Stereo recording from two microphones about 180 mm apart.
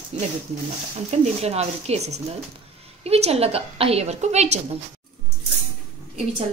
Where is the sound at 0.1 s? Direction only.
35° right (ahead or behind).